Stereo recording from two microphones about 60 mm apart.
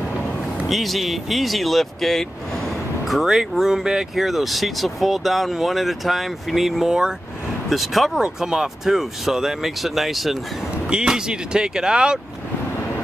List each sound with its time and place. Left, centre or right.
0.7 s speech: centre
10.9 s speech: centre